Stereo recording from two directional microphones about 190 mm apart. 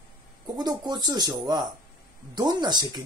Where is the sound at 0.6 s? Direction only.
20° right (ahead or behind).